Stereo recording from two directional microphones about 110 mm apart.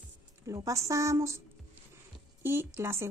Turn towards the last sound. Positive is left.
turn(degrees=-25)  # may be behind; listen again after turning